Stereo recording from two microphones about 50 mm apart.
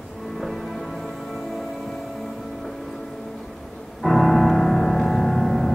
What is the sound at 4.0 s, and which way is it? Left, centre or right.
Music, centre.